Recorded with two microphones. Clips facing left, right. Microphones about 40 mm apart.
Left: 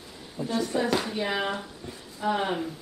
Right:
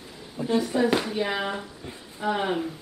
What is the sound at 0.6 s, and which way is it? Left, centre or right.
A woman's voice, centre.